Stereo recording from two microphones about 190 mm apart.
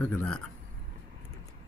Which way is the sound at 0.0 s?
10° left (ahead or behind).